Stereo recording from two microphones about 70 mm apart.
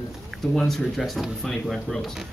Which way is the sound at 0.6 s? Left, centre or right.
Centre.